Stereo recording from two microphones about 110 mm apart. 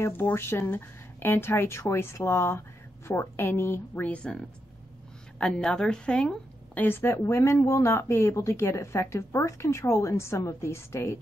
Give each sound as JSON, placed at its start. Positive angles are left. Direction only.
{"t": 0.0, "sound": "a woman's voice", "side_deg": 20}